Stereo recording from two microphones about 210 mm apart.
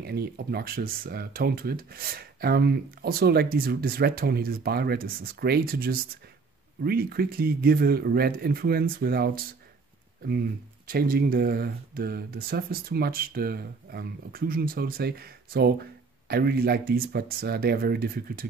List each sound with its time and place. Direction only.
0.0 s speech: 50° right (ahead or behind)
10.9 s speech: 45° right (ahead or behind)